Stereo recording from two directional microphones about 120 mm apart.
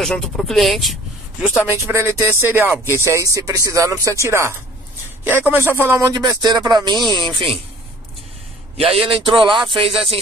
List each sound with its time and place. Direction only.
0.0 s speech: 5° left (ahead or behind)
1.6 s speech: 25° right (ahead or behind); by 7.5 s 45° right (ahead or behind)
8.7 s speech: 55° right (ahead or behind)